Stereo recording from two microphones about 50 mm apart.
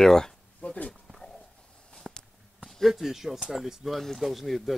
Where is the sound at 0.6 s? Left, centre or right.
Left.